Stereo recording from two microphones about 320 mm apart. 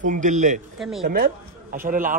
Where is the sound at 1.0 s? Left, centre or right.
Right.